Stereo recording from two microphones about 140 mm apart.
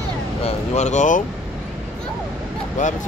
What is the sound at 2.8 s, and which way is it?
Speech, 65° left (ahead or behind).